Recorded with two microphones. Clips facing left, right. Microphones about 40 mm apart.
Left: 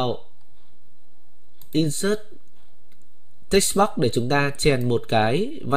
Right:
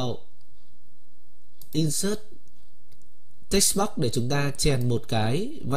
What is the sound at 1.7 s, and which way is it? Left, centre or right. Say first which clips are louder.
Speech: left 5 dB; left.